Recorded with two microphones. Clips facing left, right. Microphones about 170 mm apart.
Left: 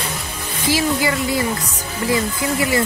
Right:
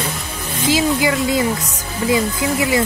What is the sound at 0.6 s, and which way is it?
Speech, 20° right (ahead or behind).